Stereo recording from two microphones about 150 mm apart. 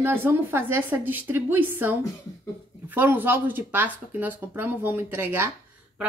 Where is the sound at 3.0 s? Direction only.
15° right (ahead or behind).